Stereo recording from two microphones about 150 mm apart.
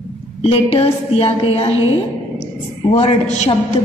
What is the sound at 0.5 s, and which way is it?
A woman's voice, 40° left (ahead or behind).